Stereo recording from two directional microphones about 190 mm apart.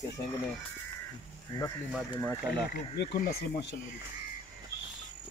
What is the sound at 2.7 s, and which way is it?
Speech, 55° left (ahead or behind).